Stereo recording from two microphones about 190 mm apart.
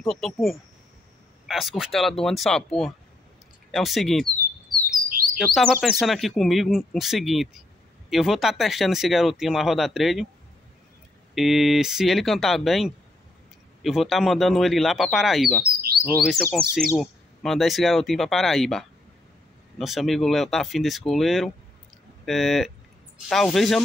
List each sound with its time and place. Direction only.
0.0 s speech: centre (ahead or behind)
5.1 s chirp: 50° right (ahead or behind)
5.5 s speech: centre (ahead or behind)
11.3 s speech: centre (ahead or behind)